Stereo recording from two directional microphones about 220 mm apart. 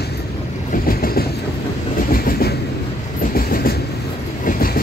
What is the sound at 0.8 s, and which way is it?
Train, 40° left (ahead or behind).